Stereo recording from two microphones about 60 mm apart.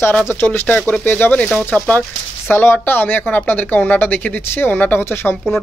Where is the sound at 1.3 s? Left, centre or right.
Left.